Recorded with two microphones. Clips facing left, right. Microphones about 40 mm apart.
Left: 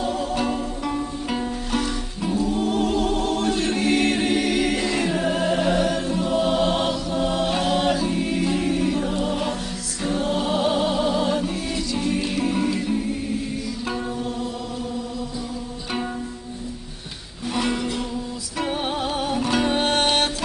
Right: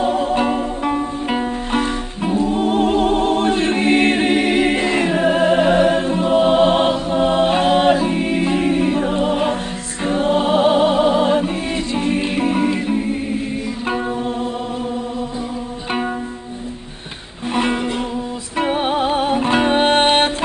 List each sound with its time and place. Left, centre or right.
0.0 s music: right
17.6 s music: right